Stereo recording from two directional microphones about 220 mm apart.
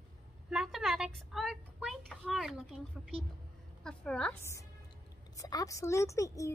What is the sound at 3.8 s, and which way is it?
A woman's voice, 5° left (ahead or behind).